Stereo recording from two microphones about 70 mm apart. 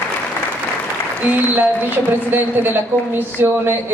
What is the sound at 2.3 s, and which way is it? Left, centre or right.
Speech, right.